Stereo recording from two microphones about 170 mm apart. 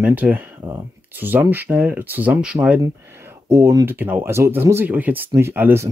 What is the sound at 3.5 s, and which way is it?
Speech, 20° right (ahead or behind).